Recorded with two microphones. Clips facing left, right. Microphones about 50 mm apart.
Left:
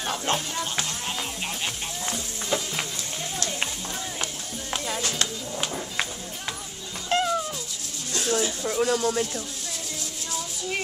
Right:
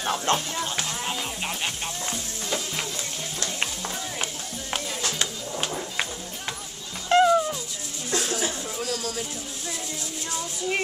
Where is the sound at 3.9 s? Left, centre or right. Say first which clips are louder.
Right 1 dB; centre.